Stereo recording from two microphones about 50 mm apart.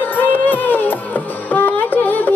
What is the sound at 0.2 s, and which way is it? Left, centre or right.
Music, left.